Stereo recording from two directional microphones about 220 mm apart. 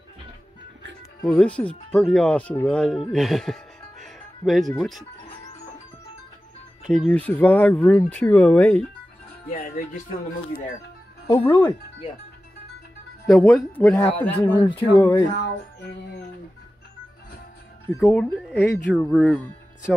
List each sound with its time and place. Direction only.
1.2 s speech: 5° left (ahead or behind)
6.9 s speech: 5° left (ahead or behind)
9.5 s speech: 40° left (ahead or behind)
11.2 s speech: 10° left (ahead or behind)
13.3 s speech: centre (ahead or behind)
17.8 s speech: centre (ahead or behind)
18.6 s speech: 10° left (ahead or behind)